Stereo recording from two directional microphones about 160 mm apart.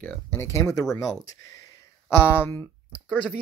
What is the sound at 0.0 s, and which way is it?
Speech, 15° left (ahead or behind).